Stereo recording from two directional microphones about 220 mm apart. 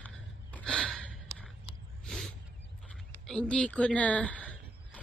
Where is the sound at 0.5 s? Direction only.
5° left (ahead or behind).